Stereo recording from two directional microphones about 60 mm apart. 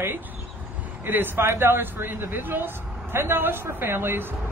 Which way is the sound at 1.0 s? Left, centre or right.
Right.